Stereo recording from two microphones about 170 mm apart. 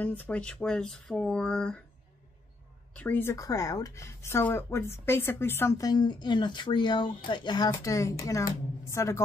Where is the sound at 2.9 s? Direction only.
10° left (ahead or behind).